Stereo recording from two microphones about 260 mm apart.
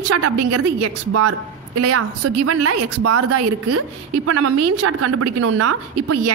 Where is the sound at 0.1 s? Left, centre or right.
Right.